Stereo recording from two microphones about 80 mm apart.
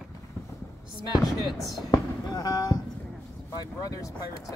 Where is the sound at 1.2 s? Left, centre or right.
Centre.